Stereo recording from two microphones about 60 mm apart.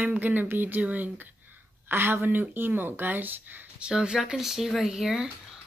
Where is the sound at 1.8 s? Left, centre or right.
Right.